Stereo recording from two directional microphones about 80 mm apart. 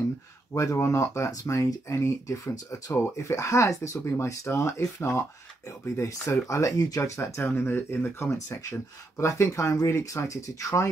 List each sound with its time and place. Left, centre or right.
0.5 s speech: left